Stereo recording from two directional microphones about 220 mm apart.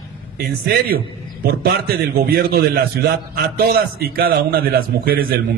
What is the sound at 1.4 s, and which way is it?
A man's voice, 45° right (ahead or behind).